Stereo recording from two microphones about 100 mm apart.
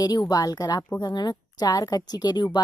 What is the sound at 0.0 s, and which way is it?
A woman's voice, 40° left (ahead or behind).